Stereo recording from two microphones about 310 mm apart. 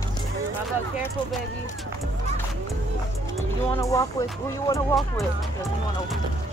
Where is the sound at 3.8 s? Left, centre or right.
Centre.